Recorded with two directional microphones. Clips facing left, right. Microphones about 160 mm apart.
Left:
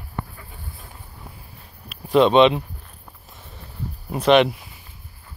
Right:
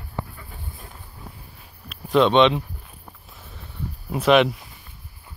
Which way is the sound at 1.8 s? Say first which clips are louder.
Left 2 dB; centre (ahead or behind).